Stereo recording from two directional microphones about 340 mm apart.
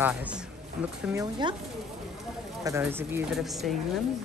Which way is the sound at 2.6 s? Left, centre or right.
Centre.